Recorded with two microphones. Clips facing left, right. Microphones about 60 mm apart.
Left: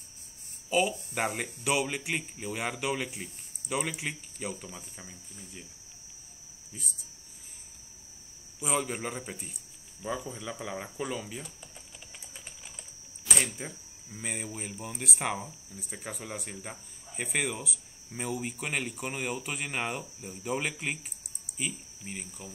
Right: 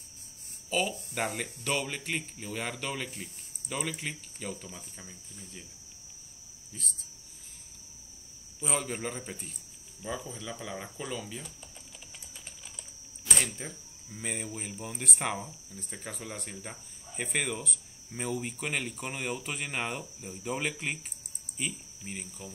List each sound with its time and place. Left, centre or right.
0.7 s speech: centre
6.7 s speech: centre
8.5 s speech: centre
13.3 s a man's voice: centre